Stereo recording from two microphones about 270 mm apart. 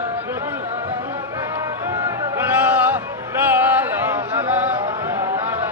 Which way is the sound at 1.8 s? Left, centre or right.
Centre.